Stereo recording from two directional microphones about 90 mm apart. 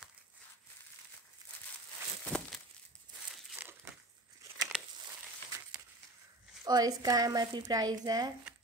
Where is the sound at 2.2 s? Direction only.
10° left (ahead or behind).